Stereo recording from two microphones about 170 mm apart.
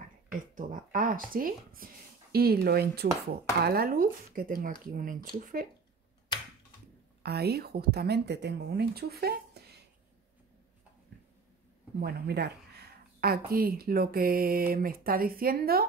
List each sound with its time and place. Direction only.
0.3 s a woman's voice: 50° right (ahead or behind)
7.2 s a woman's voice: 70° right (ahead or behind)
12.0 s a sound: 70° right (ahead or behind)
13.5 s speech: 60° right (ahead or behind)